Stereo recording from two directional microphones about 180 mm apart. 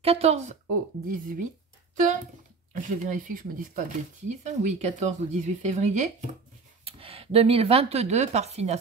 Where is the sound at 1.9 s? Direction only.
45° right (ahead or behind).